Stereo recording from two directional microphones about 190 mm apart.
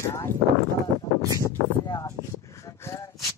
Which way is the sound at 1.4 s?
20° left (ahead or behind).